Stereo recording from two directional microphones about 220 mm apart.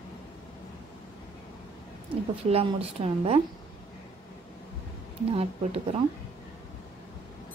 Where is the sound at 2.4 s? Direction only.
25° right (ahead or behind).